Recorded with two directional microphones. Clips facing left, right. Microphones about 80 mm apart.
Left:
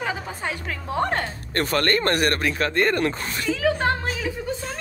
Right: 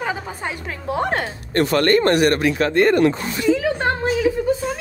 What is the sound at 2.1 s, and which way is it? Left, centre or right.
Speech, left.